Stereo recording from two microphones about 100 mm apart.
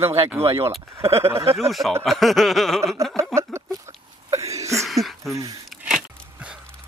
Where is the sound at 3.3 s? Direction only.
30° right (ahead or behind).